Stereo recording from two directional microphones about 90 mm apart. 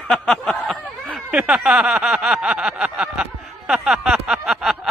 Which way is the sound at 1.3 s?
10° right (ahead or behind).